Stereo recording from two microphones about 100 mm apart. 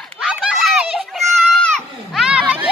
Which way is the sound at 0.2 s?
5° right (ahead or behind).